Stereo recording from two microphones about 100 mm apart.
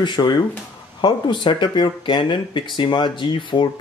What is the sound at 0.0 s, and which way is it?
Speech, 45° left (ahead or behind).